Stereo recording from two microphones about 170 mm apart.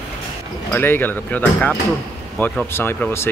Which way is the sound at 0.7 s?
10° left (ahead or behind).